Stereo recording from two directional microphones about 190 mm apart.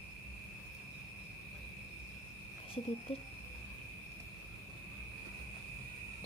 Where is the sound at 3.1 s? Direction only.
30° left (ahead or behind).